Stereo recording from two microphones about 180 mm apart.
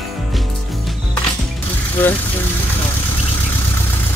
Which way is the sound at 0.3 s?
Centre (ahead or behind).